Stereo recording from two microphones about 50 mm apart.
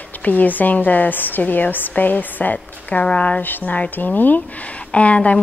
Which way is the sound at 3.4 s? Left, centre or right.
Left.